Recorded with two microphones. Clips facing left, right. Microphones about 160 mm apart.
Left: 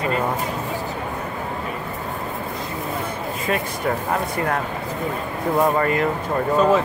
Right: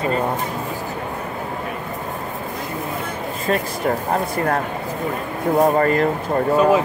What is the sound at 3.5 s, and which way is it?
Speech, 40° right (ahead or behind).